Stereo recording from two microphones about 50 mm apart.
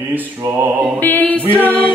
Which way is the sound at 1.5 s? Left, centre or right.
Left.